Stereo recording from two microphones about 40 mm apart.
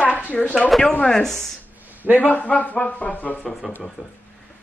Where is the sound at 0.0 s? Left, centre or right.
Left.